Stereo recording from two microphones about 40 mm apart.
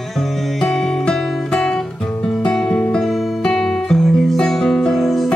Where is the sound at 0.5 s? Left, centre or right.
Centre.